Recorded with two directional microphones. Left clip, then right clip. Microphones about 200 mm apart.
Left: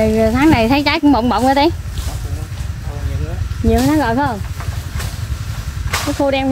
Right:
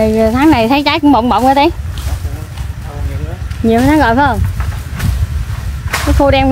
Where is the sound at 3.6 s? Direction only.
20° right (ahead or behind).